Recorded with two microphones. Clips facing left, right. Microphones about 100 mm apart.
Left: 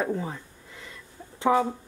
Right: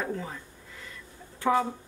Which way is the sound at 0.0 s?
20° left (ahead or behind).